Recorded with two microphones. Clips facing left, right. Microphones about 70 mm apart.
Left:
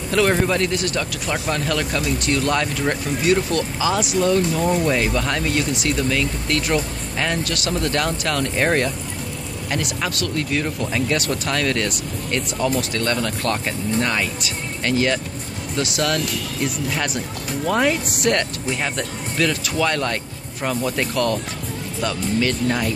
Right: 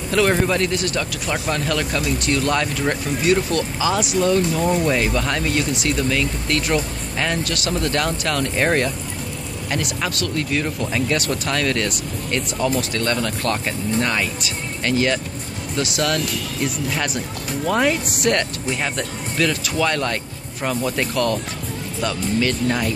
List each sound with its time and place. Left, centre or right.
0.1 s speech: centre
1.5 s speech: centre
4.8 s speech: centre
10.6 s speech: centre
11.1 s speech: centre